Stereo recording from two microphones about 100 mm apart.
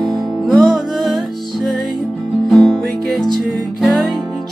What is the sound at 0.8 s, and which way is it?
Music, centre (ahead or behind).